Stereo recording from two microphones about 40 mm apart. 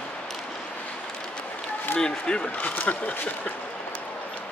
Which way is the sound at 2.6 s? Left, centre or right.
Left.